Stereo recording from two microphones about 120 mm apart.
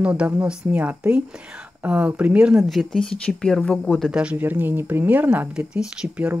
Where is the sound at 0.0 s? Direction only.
10° right (ahead or behind); by 4.1 s 5° left (ahead or behind).